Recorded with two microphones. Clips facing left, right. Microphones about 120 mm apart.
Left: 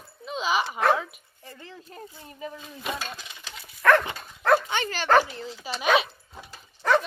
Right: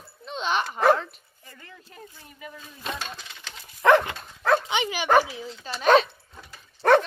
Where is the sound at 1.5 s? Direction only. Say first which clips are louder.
Left 5 dB; 25° left (ahead or behind).